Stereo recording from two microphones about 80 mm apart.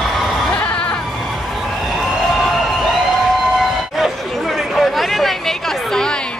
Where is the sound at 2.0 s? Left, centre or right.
Centre.